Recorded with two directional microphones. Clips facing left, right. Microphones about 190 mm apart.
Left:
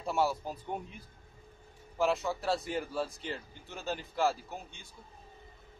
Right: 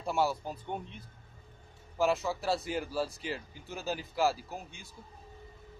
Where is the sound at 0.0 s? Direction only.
Centre (ahead or behind).